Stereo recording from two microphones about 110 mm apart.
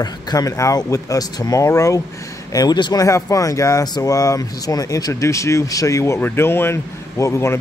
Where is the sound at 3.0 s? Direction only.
30° left (ahead or behind).